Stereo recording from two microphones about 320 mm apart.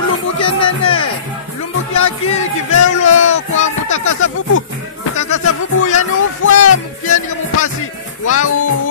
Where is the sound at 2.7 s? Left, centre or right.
Left.